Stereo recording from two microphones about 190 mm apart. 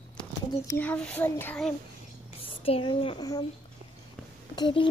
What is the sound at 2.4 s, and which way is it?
Speech, 30° left (ahead or behind).